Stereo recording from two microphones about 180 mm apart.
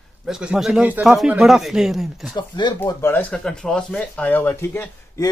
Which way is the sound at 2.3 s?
25° left (ahead or behind).